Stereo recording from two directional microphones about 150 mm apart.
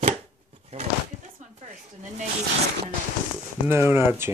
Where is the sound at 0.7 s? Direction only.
45° right (ahead or behind).